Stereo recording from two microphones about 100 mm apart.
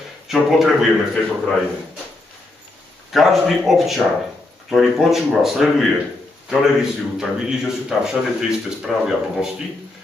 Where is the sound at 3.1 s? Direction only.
Centre (ahead or behind).